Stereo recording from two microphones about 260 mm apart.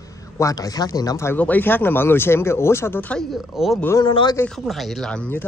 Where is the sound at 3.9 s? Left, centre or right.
Centre.